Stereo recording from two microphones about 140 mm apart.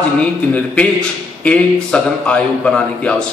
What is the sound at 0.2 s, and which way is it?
A man's voice, 10° left (ahead or behind).